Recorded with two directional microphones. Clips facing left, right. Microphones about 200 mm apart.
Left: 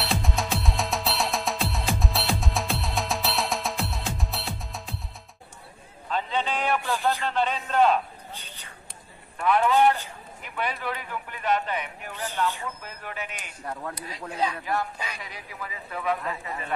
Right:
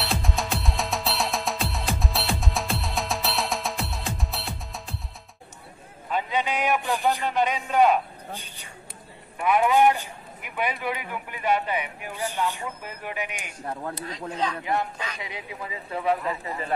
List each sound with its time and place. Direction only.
0.0 s music: centre (ahead or behind)
6.0 s a sound: 10° right (ahead or behind)
9.4 s a man's voice: 15° right (ahead or behind)
13.7 s speech: 25° right (ahead or behind)
14.3 s speech: 10° left (ahead or behind)
14.6 s speech: 20° right (ahead or behind)